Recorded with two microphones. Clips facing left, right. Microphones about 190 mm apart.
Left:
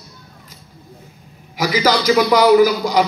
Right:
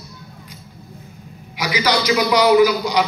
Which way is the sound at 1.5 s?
45° left (ahead or behind).